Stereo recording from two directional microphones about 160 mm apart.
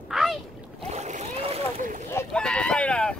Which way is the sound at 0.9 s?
45° right (ahead or behind).